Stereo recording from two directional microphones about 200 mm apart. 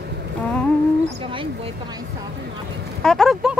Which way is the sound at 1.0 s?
25° right (ahead or behind).